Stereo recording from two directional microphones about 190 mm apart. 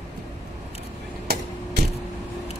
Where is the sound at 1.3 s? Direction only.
55° right (ahead or behind).